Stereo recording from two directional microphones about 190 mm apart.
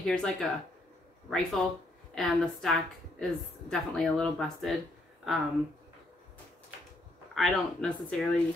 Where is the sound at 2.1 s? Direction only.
Centre (ahead or behind).